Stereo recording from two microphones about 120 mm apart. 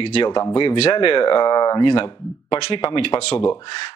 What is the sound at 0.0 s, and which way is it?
Speech, 45° left (ahead or behind).